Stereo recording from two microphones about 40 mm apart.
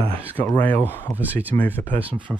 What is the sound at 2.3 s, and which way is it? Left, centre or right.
Speech, right.